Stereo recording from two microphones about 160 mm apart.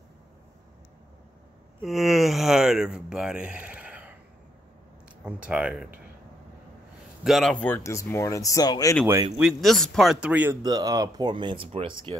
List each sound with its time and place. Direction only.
1.9 s speech: centre (ahead or behind)
5.2 s speech: 5° right (ahead or behind)
7.2 s speech: centre (ahead or behind)
7.6 s speech: 15° left (ahead or behind)
9.0 s speech: 15° right (ahead or behind)
9.4 s speech: centre (ahead or behind)
10.6 s speech: 25° right (ahead or behind)